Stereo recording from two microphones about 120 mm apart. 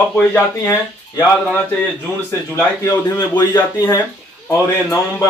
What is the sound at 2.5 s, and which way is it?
Speech, 25° left (ahead or behind).